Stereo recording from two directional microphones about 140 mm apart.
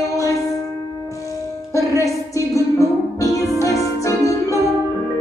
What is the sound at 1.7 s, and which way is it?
Music, 25° left (ahead or behind).